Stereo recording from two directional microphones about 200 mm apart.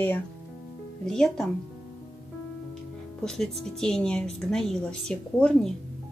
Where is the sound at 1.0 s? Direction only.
5° left (ahead or behind).